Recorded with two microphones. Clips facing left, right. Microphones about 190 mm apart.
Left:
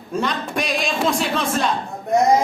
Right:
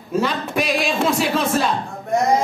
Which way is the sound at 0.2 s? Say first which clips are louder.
Right 1 dB; 5° right (ahead or behind).